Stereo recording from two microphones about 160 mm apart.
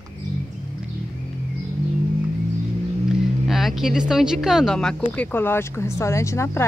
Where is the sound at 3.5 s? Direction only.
Centre (ahead or behind); by 6.6 s 15° left (ahead or behind).